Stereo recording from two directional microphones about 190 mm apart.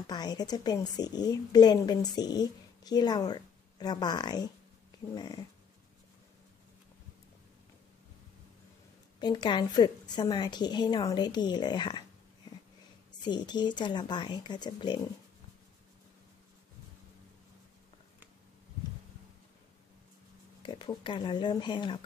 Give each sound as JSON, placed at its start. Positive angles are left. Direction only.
{"t": 0.0, "sound": "a woman's voice", "side_deg": 20}
{"t": 9.2, "sound": "a woman's voice", "side_deg": 25}
{"t": 13.2, "sound": "a woman's voice", "side_deg": 25}
{"t": 20.6, "sound": "a woman's voice", "side_deg": 25}